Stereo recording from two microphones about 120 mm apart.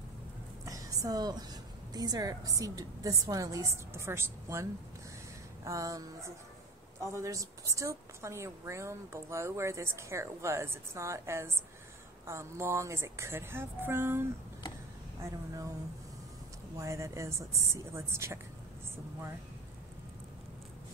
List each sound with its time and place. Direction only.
0.7 s a woman's voice: 30° right (ahead or behind)
15.2 s a sound: 25° right (ahead or behind)
16.7 s a woman's voice: 25° right (ahead or behind)